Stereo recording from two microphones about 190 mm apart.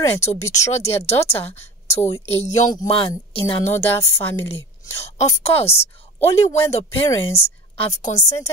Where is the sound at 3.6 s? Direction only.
10° left (ahead or behind).